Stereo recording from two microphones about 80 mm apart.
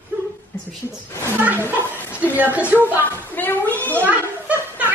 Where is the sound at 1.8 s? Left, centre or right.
Left.